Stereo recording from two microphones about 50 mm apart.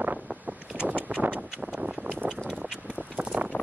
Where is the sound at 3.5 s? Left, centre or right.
Left.